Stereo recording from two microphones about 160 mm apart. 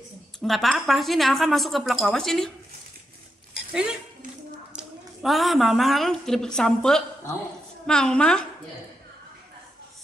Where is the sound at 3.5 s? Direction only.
5° right (ahead or behind).